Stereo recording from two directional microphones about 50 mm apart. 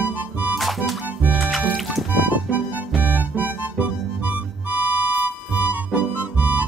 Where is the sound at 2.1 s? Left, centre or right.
Right.